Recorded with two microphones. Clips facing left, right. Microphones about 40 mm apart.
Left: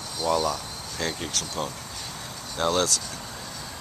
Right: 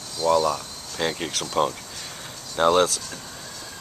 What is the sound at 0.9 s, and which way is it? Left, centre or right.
Speech, right.